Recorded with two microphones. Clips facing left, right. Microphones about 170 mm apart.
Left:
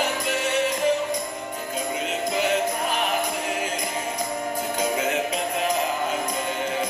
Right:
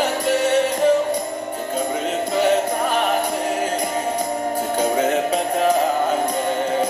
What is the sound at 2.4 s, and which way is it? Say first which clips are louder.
Music: right 7 dB; 40° right (ahead or behind).